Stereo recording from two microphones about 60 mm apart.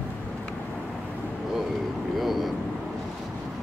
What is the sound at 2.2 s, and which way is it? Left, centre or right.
Vehicle, centre.